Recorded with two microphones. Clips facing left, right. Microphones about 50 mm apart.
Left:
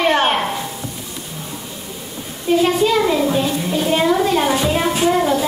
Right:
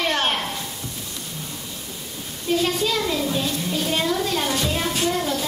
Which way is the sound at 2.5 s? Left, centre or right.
Centre.